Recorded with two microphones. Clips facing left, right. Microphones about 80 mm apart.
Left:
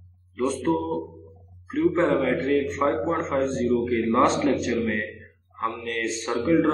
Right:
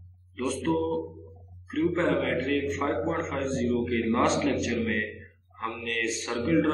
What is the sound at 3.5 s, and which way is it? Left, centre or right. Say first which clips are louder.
Speech: even; left.